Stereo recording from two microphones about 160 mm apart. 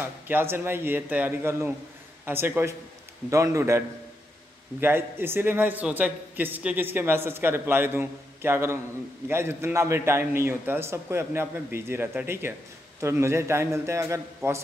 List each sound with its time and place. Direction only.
0.0 s a man's voice: 15° right (ahead or behind)